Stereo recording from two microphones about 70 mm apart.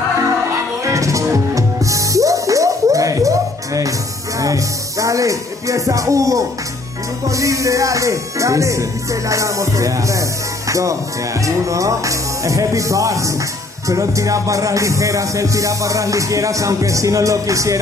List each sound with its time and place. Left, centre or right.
0.8 s music: right
4.4 s speech: right
7.2 s music: right
10.7 s speech: right
11.4 s music: right